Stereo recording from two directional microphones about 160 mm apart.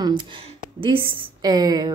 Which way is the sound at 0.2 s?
35° right (ahead or behind).